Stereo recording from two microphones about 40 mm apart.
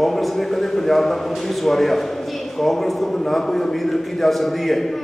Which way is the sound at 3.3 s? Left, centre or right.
Centre.